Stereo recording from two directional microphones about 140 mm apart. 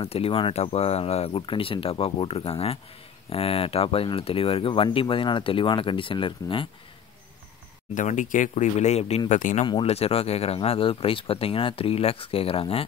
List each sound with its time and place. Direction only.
0.0 s speech: 45° left (ahead or behind)
7.9 s speech: 65° left (ahead or behind)
9.3 s speech: 65° left (ahead or behind)
9.7 s speech: 40° left (ahead or behind)